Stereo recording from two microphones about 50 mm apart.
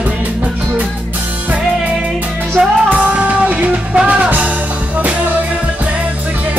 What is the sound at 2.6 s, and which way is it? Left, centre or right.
Music, centre.